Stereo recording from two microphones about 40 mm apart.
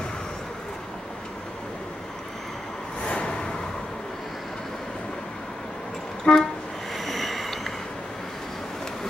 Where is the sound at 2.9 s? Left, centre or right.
Left; by 4.5 s centre.